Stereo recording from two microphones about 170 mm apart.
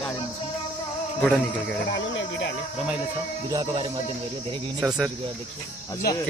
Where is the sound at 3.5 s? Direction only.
25° right (ahead or behind).